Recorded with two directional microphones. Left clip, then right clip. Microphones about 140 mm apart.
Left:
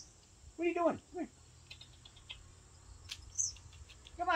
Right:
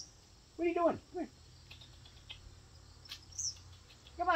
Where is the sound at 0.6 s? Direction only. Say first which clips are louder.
Right 1 dB; 15° left (ahead or behind).